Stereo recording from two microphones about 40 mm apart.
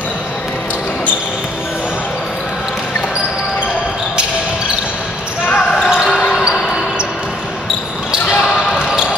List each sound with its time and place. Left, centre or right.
5.5 s basketball bounce: left
5.9 s basketball bounce: centre
8.5 s basketball bounce: centre